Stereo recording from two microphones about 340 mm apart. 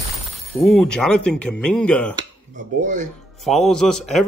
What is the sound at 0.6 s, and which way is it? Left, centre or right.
A man's voice, centre.